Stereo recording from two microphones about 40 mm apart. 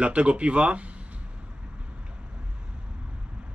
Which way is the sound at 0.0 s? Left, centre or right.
Right.